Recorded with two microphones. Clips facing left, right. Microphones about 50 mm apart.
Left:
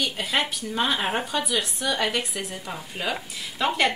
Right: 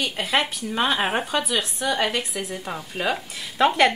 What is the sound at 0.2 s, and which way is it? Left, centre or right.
Speech, right.